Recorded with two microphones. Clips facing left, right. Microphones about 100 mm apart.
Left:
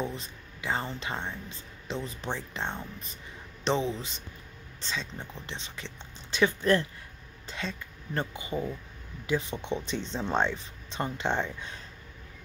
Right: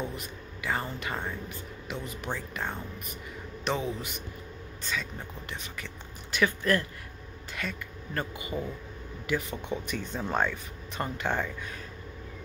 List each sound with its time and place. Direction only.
0.1 s speech: 25° left (ahead or behind)
5.5 s speech: 25° left (ahead or behind)